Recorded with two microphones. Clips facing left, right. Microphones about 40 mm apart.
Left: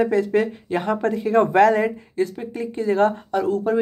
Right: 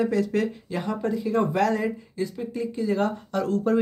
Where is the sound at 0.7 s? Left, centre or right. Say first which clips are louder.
Left 6 dB; left.